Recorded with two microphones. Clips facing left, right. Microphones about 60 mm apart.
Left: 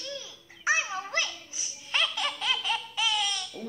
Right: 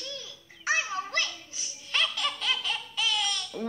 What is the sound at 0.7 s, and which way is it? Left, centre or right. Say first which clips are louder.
Giggle: left 1 dB; centre.